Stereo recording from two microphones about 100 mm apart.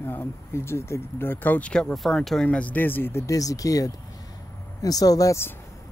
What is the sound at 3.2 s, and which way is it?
Speech, 35° left (ahead or behind).